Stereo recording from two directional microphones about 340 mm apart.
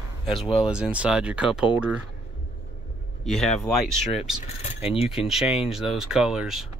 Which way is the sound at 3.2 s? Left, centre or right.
Centre.